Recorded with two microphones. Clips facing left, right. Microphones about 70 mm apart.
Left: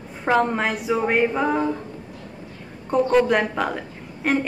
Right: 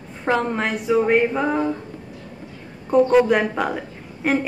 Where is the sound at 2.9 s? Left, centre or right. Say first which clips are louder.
Right 3 dB; centre.